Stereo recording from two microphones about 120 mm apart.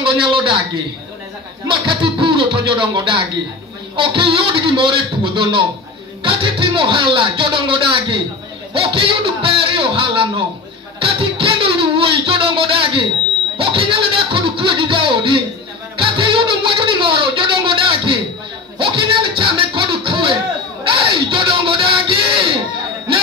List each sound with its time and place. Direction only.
0.0 s a man's voice: 45° right (ahead or behind)
1.7 s speech: 45° right (ahead or behind)
11.0 s music: 50° right (ahead or behind)
20.8 s a sound: 45° right (ahead or behind)